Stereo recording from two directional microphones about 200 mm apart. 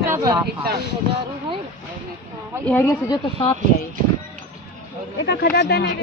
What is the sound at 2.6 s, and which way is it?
Speech, 10° left (ahead or behind).